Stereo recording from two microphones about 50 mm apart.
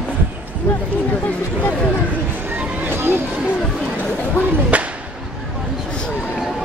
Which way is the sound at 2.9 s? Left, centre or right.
Right.